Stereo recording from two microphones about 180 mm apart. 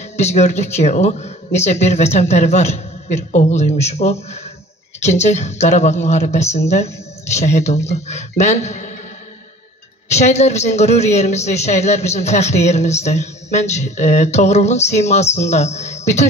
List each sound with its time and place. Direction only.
0.2 s a man's voice: 40° left (ahead or behind)
10.0 s a man's voice: 40° left (ahead or behind)